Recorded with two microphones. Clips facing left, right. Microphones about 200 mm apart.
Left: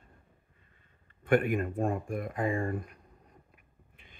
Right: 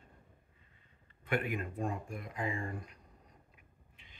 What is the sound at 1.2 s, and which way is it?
Speech, 50° left (ahead or behind).